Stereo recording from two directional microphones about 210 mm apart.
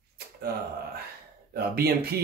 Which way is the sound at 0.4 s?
50° right (ahead or behind).